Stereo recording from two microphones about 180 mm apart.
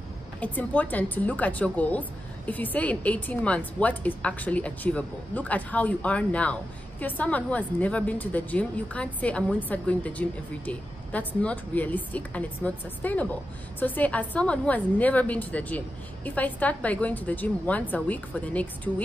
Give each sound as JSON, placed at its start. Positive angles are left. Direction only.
{"t": 0.4, "sound": "a woman's voice", "side_deg": 10}